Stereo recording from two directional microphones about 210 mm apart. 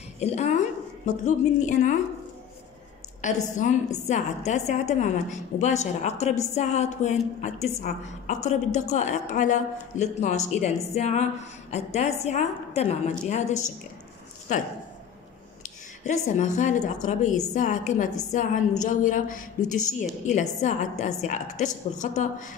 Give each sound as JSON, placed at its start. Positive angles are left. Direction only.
{"t": 0.2, "sound": "a woman's voice", "side_deg": 35}
{"t": 3.2, "sound": "a woman's voice", "side_deg": 35}
{"t": 16.0, "sound": "a woman's voice", "side_deg": 35}